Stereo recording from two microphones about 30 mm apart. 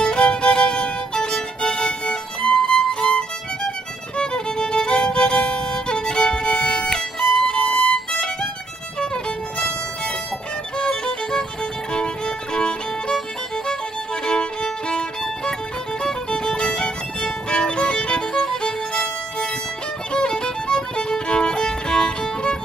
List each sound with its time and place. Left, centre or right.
0.0 s music: left
2.0 s violin: centre
2.9 s music: left
4.2 s violin: left
6.9 s music: centre
9.0 s music: left
10.8 s music: centre
11.9 s music: left
14.2 s music: left
18.3 s music: centre
20.1 s music: left